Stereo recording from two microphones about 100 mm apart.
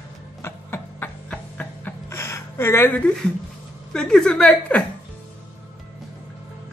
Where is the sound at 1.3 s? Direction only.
10° left (ahead or behind).